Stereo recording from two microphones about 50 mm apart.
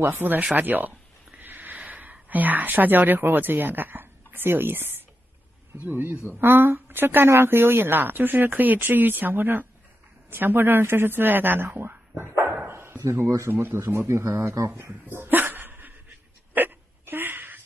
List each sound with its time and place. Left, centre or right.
0.0 s speech: right
0.6 s speech: right
12.2 s dog: right
12.6 s bow-wow: right
13.5 s speech: right
13.8 s speech: right
14.8 s dog: right
16.5 s hiccup: right
17.0 s a sound: right